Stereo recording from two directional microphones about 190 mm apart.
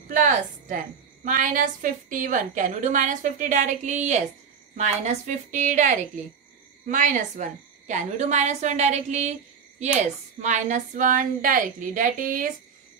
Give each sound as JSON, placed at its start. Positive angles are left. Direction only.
{"t": 0.1, "sound": "a woman's voice", "side_deg": -45}